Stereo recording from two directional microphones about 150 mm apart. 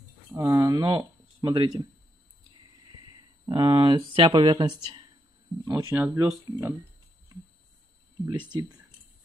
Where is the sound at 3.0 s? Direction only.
30° right (ahead or behind).